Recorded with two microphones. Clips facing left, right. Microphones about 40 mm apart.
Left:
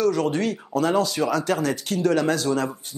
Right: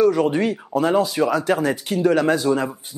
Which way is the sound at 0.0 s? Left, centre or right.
Centre.